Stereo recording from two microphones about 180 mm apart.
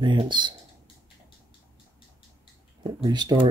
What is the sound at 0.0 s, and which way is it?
Speech, 25° right (ahead or behind).